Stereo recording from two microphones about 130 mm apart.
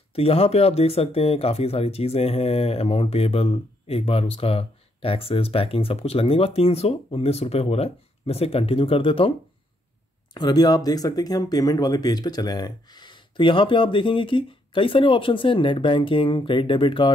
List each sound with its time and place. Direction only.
0.1 s speech: 50° left (ahead or behind)
10.3 s speech: 30° left (ahead or behind)